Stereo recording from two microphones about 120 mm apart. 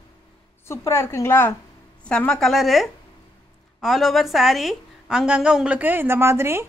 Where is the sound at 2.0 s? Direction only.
10° left (ahead or behind); by 6.6 s 20° right (ahead or behind).